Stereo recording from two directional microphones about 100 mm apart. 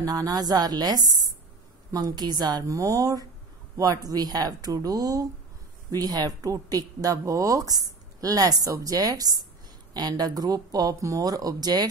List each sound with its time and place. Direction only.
0.0 s speech: 40° right (ahead or behind)